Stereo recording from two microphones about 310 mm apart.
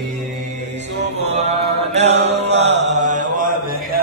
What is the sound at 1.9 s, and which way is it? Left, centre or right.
Mantra, right.